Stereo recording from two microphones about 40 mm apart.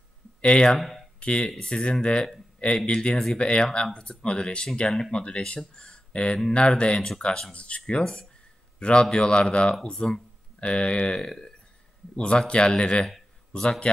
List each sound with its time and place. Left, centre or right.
0.4 s speech: left
0.7 s speech: centre
1.2 s a man's voice: left
7.5 s speech: left
7.8 s a man's voice: centre
8.7 s a sound: left
9.1 s a man's voice: left